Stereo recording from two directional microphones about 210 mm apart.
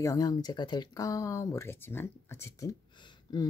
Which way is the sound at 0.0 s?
15° left (ahead or behind).